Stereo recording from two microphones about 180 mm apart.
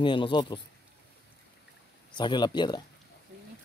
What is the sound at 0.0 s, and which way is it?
Speech, 25° left (ahead or behind).